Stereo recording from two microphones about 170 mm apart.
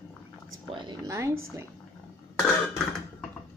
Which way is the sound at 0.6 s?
25° right (ahead or behind).